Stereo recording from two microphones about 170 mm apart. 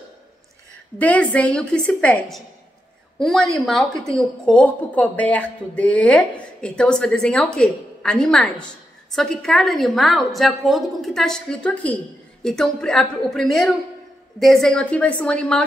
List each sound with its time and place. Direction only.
0.9 s a woman's voice: 10° left (ahead or behind)